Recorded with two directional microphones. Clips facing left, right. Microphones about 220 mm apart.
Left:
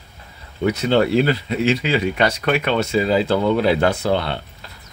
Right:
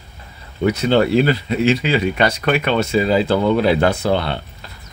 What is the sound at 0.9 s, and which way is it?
Speech, 40° right (ahead or behind).